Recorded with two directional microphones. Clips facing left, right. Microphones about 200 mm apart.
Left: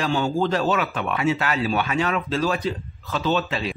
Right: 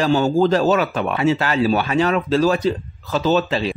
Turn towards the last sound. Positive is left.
turn(degrees=-35)  # may be behind; listen again after turning